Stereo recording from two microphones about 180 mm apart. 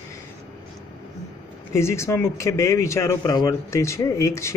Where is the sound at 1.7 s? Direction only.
15° left (ahead or behind).